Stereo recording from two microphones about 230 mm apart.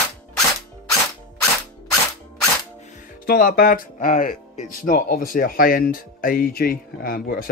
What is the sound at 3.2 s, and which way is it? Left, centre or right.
Speech, left.